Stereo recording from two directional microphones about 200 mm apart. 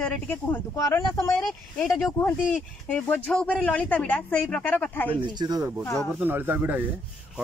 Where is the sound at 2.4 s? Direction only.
Centre (ahead or behind).